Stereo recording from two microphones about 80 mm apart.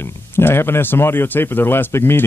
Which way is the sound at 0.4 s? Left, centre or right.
Left.